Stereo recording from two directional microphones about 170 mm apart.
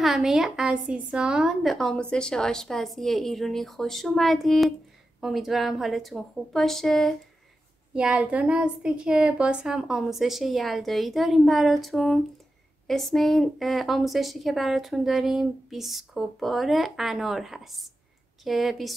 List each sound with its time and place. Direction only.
0.0 s a woman's voice: centre (ahead or behind)